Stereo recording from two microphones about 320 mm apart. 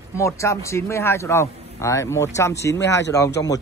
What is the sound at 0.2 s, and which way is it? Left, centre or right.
Speech, centre.